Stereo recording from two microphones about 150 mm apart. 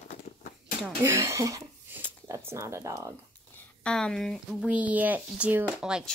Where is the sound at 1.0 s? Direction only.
15° right (ahead or behind).